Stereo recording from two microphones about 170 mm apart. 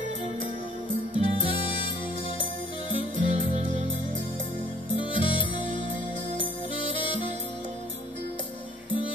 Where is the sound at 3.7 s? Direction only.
45° right (ahead or behind).